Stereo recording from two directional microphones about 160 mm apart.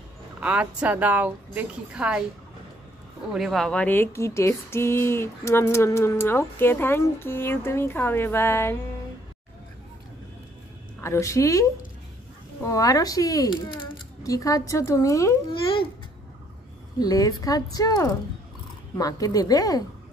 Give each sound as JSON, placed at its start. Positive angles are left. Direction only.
{"t": 0.4, "sound": "speech", "side_deg": -10}
{"t": 3.3, "sound": "speech", "side_deg": 0}
{"t": 11.0, "sound": "a woman's voice", "side_deg": 20}
{"t": 17.0, "sound": "a child's voice", "side_deg": 20}